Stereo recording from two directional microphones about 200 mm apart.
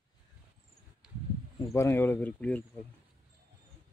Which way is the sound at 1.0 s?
5° right (ahead or behind).